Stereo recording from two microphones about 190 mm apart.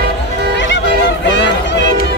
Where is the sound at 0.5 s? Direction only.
70° left (ahead or behind).